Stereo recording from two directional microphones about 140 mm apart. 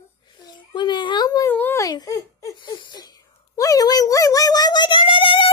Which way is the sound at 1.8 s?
25° left (ahead or behind).